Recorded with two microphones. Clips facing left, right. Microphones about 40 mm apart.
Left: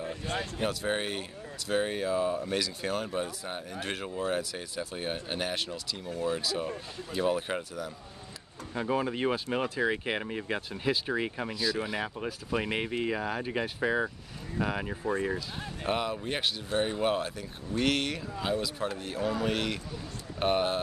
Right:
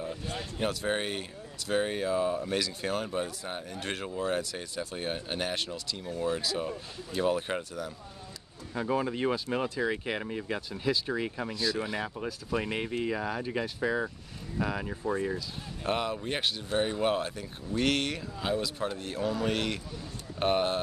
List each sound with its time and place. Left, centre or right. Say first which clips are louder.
0.0 s a sound: left 2 dB; left
0.6 s speech: right 2 dB; centre
11.5 s speech: even; centre
12.0 s speech: left 1 dB; left
15.9 s speech: even; centre